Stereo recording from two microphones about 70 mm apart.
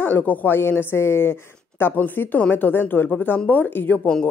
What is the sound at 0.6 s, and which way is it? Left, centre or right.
Speech, left.